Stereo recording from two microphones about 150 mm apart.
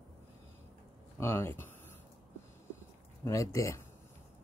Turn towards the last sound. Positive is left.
turn(degrees=20)  # may be behind; listen again after turning